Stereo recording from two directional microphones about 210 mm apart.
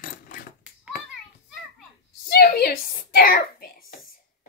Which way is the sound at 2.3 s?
50° left (ahead or behind).